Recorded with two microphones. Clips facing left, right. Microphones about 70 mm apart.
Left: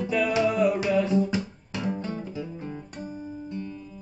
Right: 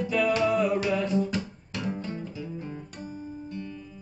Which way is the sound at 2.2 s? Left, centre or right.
Left.